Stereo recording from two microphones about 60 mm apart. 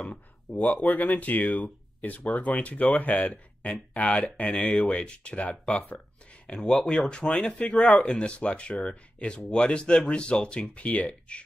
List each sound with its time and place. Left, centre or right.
0.1 s speech: left
6.6 s speech: centre